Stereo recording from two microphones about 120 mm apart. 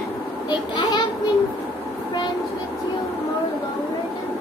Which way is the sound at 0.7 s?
35° left (ahead or behind).